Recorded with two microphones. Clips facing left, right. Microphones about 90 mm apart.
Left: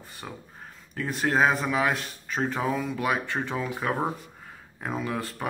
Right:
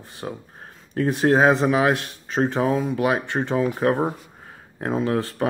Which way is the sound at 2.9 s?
70° right (ahead or behind).